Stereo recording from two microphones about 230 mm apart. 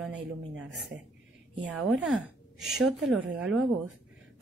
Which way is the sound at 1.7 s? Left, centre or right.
Centre.